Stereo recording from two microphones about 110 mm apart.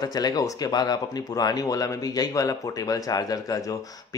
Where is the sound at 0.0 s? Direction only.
35° left (ahead or behind).